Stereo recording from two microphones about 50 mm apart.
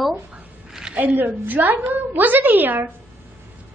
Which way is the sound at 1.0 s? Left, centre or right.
Right.